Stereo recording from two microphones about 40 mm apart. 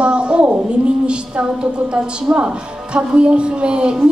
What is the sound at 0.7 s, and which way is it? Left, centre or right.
A woman's voice, right.